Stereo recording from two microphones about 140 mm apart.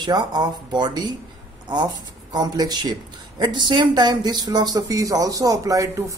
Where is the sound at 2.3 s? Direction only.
30° right (ahead or behind).